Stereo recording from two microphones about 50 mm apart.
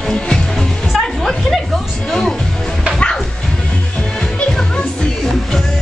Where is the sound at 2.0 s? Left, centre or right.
Centre.